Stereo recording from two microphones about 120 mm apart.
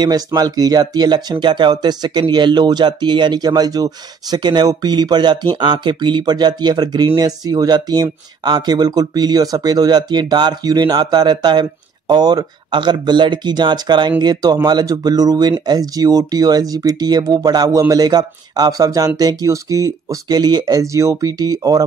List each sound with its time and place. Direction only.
0.0 s speech: 35° right (ahead or behind)